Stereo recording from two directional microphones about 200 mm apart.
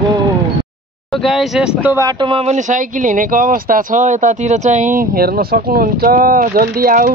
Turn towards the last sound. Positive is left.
turn(degrees=-45)  # may be behind; listen again after turning